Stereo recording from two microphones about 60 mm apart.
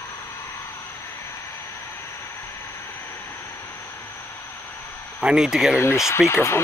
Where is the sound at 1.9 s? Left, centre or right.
Left.